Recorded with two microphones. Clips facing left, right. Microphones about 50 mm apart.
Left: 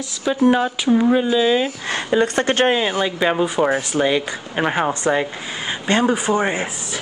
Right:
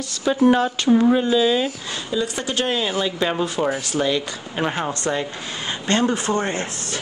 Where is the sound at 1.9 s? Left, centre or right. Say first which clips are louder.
Left 6 dB; left.